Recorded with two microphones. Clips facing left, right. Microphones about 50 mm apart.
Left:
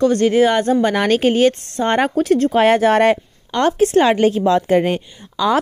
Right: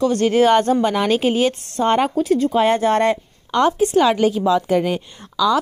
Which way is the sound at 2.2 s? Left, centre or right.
Left.